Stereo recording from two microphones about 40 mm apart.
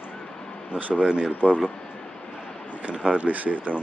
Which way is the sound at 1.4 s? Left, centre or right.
Left.